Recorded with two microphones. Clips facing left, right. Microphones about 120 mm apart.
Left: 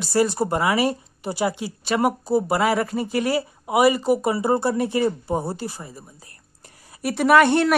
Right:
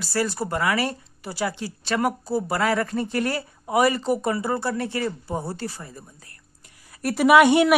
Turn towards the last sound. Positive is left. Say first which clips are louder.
# right 1 dB
turn(degrees=-10)  # may be behind; listen again after turning